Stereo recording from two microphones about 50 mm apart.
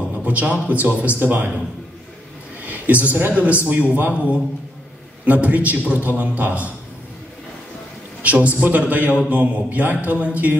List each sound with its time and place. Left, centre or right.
0.2 s a man's voice: right
1.2 s a man's voice: right
2.6 s a man's voice: right
5.2 s a man's voice: right
8.2 s a man's voice: right